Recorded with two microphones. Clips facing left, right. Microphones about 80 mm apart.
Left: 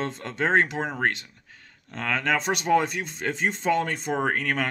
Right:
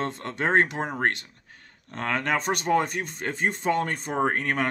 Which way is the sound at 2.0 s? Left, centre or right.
Right.